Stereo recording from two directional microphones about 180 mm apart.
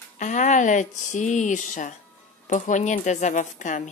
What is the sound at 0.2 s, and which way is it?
Speech, 45° left (ahead or behind).